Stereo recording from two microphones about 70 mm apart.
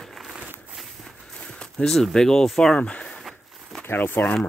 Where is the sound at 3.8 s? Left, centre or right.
Left.